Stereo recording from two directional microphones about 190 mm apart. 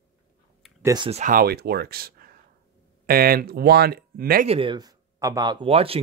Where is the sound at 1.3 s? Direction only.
55° right (ahead or behind).